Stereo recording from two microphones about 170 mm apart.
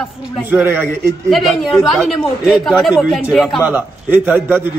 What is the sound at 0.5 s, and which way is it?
Speech, 10° right (ahead or behind).